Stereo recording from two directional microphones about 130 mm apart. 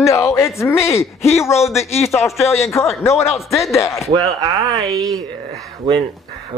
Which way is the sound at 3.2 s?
Centre (ahead or behind).